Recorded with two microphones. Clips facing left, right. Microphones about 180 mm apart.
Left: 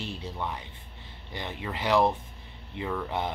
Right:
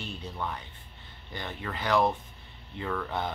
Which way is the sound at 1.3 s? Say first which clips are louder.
Left 1 dB; 20° left (ahead or behind).